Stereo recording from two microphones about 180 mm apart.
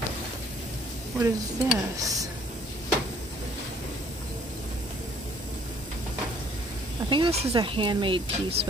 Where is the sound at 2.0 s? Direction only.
20° right (ahead or behind).